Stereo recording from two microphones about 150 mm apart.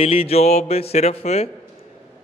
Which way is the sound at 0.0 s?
40° left (ahead or behind).